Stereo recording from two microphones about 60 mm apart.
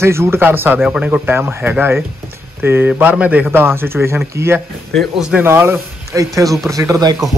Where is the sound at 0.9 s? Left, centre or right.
Right.